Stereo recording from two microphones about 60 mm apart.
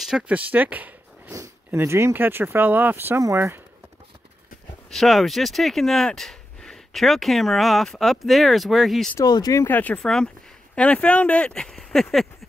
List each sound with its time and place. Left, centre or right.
0.3 s speech: right
1.7 s speech: right
2.1 s speech: right
4.9 s speech: centre
9.2 s speech: left
9.7 s speech: left
9.9 s speech: centre
11.5 s speech: centre